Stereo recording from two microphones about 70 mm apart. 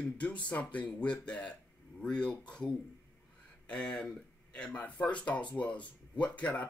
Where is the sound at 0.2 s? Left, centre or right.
Centre.